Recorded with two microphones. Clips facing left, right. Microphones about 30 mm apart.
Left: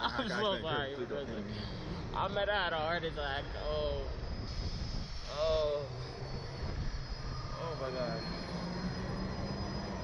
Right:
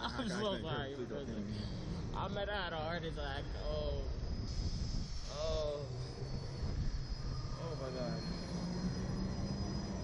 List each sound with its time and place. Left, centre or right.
0.0 s a man's voice: left
5.3 s a man's voice: left
7.6 s vehicle: left